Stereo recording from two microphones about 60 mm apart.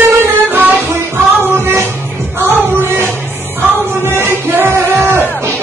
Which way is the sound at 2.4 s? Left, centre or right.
Right.